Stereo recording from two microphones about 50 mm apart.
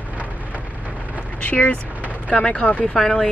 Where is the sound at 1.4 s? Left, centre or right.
Left.